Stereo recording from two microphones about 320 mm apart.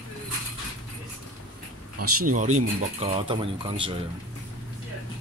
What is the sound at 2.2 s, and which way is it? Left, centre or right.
Speech, right.